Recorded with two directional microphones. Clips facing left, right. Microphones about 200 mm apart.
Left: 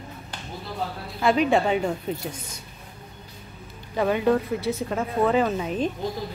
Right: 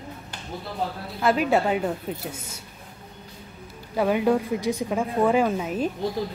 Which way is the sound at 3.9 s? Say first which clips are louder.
Even; 10° right (ahead or behind).